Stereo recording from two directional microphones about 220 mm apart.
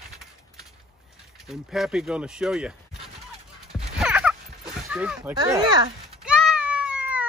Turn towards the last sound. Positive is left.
turn(degrees=-5)  # may be behind; listen again after turning